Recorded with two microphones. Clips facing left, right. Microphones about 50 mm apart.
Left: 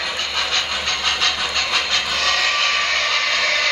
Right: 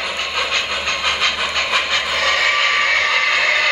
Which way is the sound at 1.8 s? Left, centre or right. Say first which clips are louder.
Right 3 dB; centre.